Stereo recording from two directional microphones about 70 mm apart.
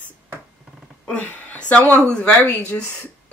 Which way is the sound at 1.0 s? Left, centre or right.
Centre.